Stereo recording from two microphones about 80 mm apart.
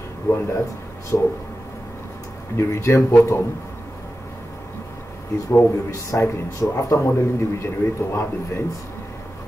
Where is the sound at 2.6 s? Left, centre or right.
Left.